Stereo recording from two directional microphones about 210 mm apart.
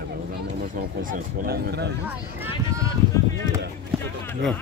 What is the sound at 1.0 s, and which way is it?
Speech, 40° right (ahead or behind).